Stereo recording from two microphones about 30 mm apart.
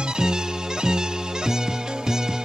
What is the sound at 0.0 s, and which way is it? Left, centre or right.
Music, right.